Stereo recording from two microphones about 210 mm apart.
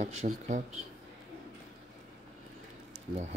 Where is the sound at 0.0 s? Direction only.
35° right (ahead or behind).